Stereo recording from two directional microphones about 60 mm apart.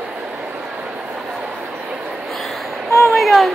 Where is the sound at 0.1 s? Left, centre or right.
Centre.